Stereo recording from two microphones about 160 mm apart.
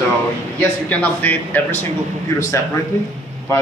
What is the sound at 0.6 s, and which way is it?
Speech, 10° left (ahead or behind).